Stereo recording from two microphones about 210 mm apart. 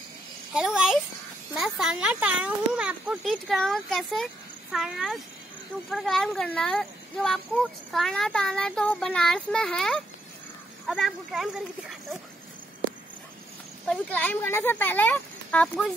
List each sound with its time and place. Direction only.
0.6 s a child's voice: 5° right (ahead or behind)
13.8 s speech: 5° left (ahead or behind)